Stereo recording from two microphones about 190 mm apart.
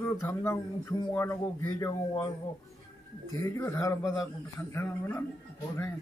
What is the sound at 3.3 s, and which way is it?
A man's voice, 15° left (ahead or behind).